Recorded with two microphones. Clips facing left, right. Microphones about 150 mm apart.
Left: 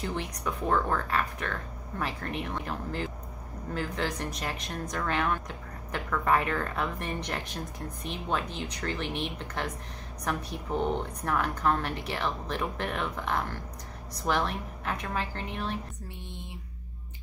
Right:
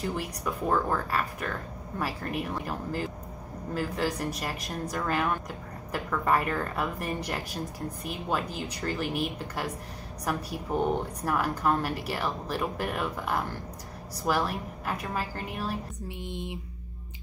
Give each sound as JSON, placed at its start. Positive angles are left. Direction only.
{"t": 0.0, "sound": "a woman's voice", "side_deg": -5}
{"t": 16.2, "sound": "a woman's voice", "side_deg": -15}